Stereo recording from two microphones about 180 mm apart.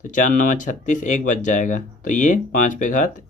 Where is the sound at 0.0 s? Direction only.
45° left (ahead or behind).